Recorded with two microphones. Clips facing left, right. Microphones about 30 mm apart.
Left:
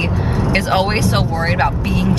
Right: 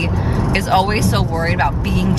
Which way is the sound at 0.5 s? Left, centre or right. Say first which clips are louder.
Right 1 dB; centre.